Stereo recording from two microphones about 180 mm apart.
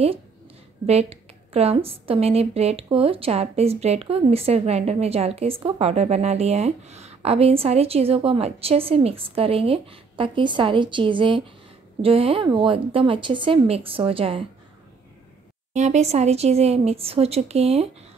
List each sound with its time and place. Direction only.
0.8 s a woman's voice: 35° right (ahead or behind)
15.7 s a woman's voice: 40° right (ahead or behind)